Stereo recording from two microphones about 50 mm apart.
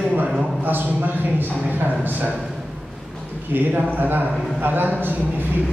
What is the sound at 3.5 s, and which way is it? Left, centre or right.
A man's voice, right.